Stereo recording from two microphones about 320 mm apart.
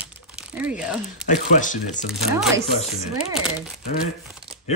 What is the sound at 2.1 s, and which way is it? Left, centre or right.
Speech, centre.